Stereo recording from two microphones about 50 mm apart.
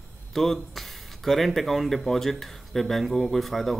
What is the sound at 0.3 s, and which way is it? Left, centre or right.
Speech, centre.